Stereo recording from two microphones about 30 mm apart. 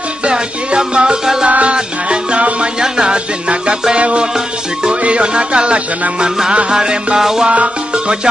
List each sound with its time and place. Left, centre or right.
0.2 s music: right
2.8 s music: right
3.9 s music: right; by 7.4 s centre